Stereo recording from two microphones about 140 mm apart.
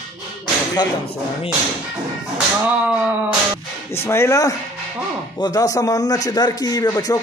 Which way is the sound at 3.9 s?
20° left (ahead or behind).